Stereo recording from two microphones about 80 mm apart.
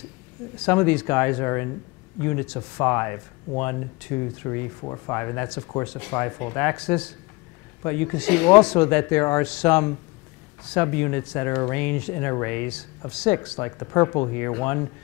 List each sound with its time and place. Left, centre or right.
0.6 s speech: centre
5.9 s speech: centre
6.8 s speech: centre